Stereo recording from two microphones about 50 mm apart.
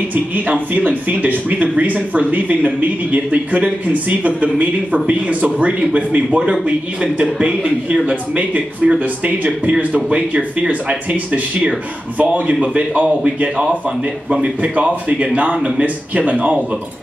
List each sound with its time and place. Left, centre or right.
0.1 s a man's voice: right